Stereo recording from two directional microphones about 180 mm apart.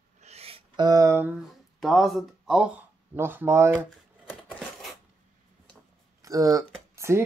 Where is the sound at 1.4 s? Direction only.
Centre (ahead or behind).